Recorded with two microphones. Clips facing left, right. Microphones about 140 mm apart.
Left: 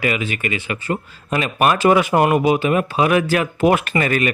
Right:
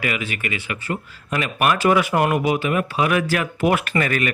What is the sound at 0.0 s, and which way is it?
Speech, 25° left (ahead or behind).